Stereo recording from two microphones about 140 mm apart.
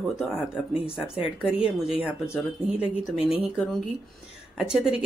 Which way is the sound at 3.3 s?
5° right (ahead or behind).